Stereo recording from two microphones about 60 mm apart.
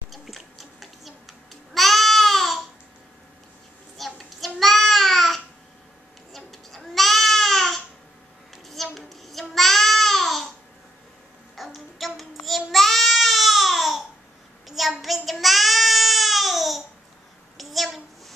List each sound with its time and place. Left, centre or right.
0.1 s babbling: centre
4.0 s child singing: centre
6.3 s a sound: centre
8.6 s child singing: centre
11.5 s child singing: centre
17.6 s a sound: centre